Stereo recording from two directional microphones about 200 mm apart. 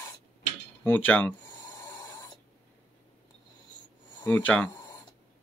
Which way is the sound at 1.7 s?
20° left (ahead or behind).